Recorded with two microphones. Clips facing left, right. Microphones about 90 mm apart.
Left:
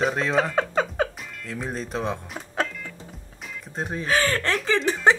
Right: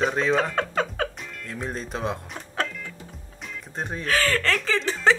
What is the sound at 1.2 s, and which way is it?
Music, centre (ahead or behind).